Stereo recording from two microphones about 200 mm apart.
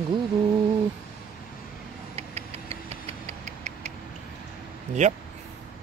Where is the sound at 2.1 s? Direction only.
30° right (ahead or behind).